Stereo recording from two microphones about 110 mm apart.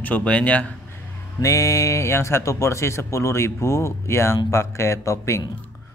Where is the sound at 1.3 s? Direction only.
30° left (ahead or behind).